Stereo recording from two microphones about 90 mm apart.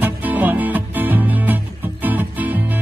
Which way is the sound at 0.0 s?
20° right (ahead or behind).